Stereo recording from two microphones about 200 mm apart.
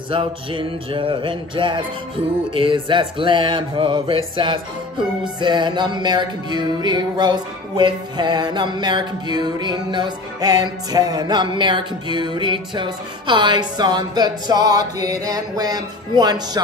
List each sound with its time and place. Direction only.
0.1 s music: 25° right (ahead or behind)